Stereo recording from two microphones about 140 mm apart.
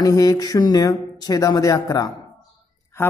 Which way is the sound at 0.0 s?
25° left (ahead or behind).